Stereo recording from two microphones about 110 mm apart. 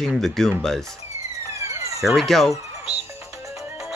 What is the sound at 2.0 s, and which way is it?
Speech, centre (ahead or behind).